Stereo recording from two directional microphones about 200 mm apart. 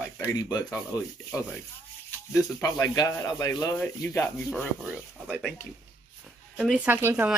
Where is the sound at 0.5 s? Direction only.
20° left (ahead or behind).